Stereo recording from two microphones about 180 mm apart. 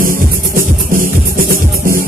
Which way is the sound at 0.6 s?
50° right (ahead or behind).